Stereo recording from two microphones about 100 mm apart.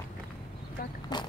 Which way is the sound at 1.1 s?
45° left (ahead or behind).